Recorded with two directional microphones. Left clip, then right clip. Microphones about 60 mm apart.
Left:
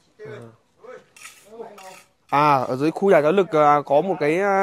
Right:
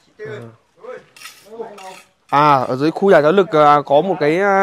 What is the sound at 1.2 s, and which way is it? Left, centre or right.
Cutlery, centre.